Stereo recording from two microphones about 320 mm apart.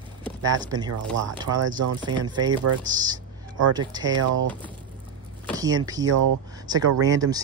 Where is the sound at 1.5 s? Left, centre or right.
Right.